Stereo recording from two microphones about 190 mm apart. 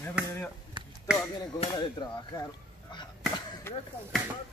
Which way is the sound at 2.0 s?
25° left (ahead or behind).